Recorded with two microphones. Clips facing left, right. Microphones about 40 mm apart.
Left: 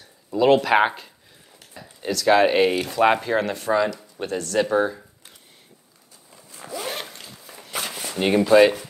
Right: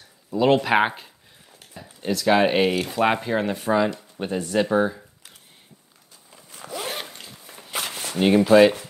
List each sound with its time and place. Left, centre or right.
0.4 s speech: centre
1.8 s a sound: right
2.2 s speech: centre
4.6 s speech: centre
6.7 s zipper: centre
7.7 s walk: right
8.2 s speech: centre